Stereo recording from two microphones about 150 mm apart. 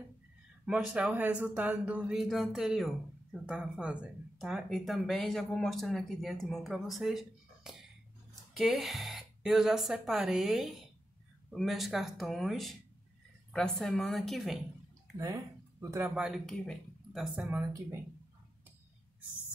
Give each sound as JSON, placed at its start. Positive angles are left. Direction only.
{"t": 0.7, "sound": "speech", "side_deg": -5}
{"t": 15.1, "sound": "speech", "side_deg": -20}
{"t": 16.2, "sound": "speech", "side_deg": 0}